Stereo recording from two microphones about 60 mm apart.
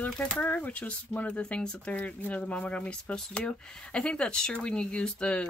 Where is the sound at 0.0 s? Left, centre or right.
Left.